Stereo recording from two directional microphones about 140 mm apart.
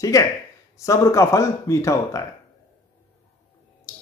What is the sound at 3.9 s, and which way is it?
Music, 20° left (ahead or behind).